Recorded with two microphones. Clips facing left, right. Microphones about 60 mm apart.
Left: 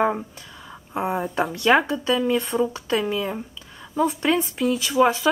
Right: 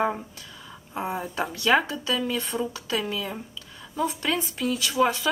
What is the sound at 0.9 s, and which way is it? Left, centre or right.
Speech, centre.